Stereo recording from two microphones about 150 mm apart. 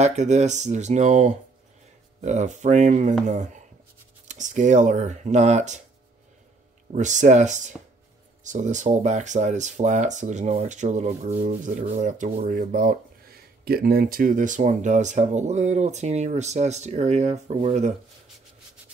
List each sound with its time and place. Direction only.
0.0 s speech: 50° right (ahead or behind)
6.9 s speech: 55° right (ahead or behind)